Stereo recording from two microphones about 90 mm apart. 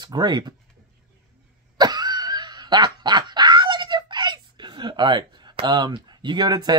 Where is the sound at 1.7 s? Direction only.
50° right (ahead or behind).